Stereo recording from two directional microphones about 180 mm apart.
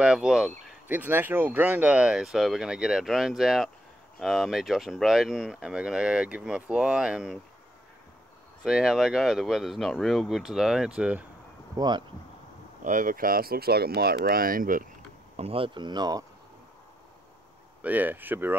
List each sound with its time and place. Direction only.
0.0 s speech: 5° right (ahead or behind)
8.6 s speech: 5° right (ahead or behind)
11.7 s speech: 20° right (ahead or behind)
12.8 s speech: 50° right (ahead or behind)
15.3 s speech: 30° right (ahead or behind)
17.8 s speech: 10° right (ahead or behind)